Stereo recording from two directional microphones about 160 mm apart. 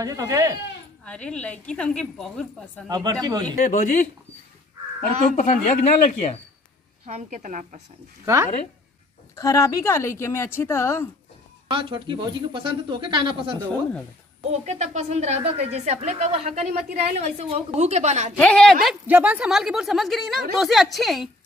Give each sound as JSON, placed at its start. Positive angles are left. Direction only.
{"t": 0.0, "sound": "speech", "side_deg": -20}
{"t": 1.0, "sound": "a woman's voice", "side_deg": 5}
{"t": 2.9, "sound": "speech", "side_deg": -25}
{"t": 3.5, "sound": "speech", "side_deg": 55}
{"t": 5.3, "sound": "speech", "side_deg": 50}
{"t": 7.1, "sound": "speech", "side_deg": -45}
{"t": 9.3, "sound": "a woman's voice", "side_deg": 20}
{"t": 11.7, "sound": "speech", "side_deg": -30}
{"t": 14.5, "sound": "speech", "side_deg": -45}
{"t": 18.4, "sound": "a woman's voice", "side_deg": 5}
{"t": 19.0, "sound": "a woman's voice", "side_deg": -10}